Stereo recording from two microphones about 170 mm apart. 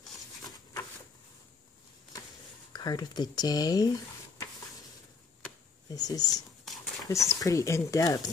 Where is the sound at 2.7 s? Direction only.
25° left (ahead or behind).